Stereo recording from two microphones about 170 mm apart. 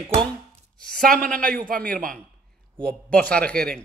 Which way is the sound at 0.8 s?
55° right (ahead or behind).